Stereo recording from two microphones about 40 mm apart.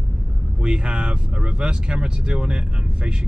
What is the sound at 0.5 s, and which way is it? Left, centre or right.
Speech, right.